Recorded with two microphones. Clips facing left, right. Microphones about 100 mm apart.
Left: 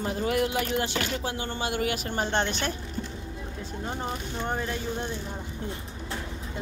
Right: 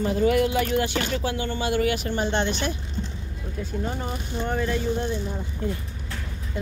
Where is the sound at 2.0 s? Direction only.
45° left (ahead or behind).